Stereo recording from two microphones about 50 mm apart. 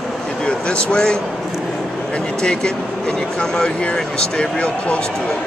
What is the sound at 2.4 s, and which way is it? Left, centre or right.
Speech, centre.